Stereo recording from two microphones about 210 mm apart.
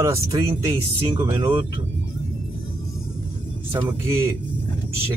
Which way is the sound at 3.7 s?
20° right (ahead or behind).